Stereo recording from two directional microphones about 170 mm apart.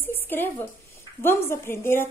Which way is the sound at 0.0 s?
10° left (ahead or behind).